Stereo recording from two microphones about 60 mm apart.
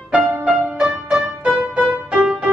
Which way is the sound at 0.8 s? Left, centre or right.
Centre.